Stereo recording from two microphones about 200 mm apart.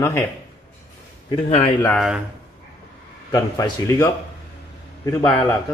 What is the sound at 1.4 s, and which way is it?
Speech, 30° left (ahead or behind).